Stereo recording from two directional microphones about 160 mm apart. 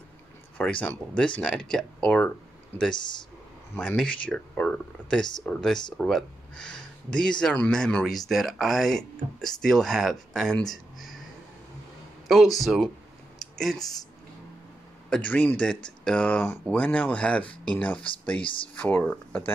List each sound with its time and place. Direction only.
0.6 s speech: 10° left (ahead or behind)
2.9 s speech: 30° left (ahead or behind)
3.7 s speech: 5° left (ahead or behind)
12.5 s speech: centre (ahead or behind)
15.0 s speech: 5° left (ahead or behind)
18.4 s speech: 30° left (ahead or behind)
18.8 s speech: 10° left (ahead or behind)